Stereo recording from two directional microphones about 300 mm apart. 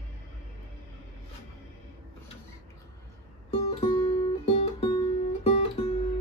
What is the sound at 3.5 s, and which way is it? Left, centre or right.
Music, centre.